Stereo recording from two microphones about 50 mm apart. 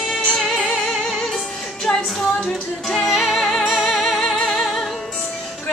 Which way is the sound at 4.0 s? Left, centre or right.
Centre.